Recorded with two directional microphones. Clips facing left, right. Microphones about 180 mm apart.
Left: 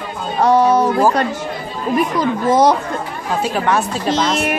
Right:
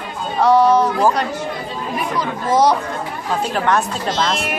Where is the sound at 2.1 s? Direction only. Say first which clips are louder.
Even; 50° left (ahead or behind).